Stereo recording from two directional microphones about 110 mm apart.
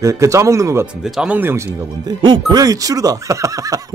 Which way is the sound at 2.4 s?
35° right (ahead or behind).